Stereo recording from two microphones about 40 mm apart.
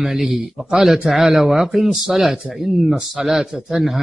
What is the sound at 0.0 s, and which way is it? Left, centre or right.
Speech, centre.